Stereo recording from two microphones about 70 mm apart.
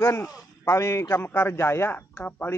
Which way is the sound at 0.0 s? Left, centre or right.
Left.